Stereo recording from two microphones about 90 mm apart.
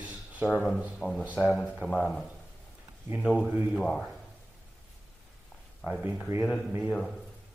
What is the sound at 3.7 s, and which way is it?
Speech, 5° left (ahead or behind).